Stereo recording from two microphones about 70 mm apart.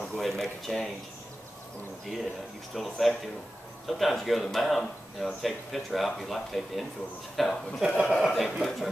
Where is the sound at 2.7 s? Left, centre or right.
Centre.